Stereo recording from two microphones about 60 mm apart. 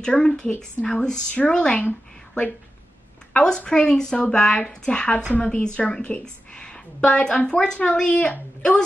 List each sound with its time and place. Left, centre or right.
0.0 s a woman's voice: centre
1.9 s a sound: left
3.3 s a woman's voice: centre